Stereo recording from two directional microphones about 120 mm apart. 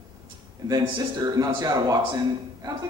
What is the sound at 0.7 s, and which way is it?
A man's voice, 35° right (ahead or behind).